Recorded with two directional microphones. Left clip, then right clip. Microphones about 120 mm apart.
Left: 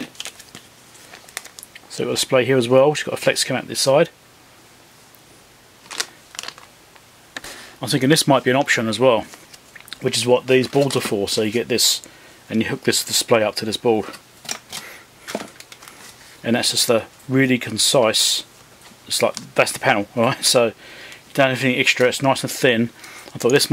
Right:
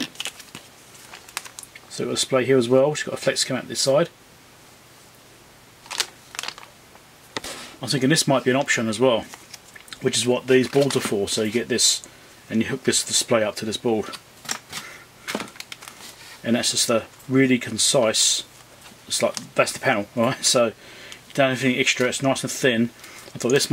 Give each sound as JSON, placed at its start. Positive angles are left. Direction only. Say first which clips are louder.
{"t": 1.9, "sound": "speech", "louder": "left 4 dB", "side_deg": 30}
{"t": 5.9, "sound": "a sound", "louder": "even", "side_deg": 5}
{"t": 7.8, "sound": "speech", "louder": "left 4 dB", "side_deg": 30}
{"t": 16.4, "sound": "speech", "louder": "left 4 dB", "side_deg": 30}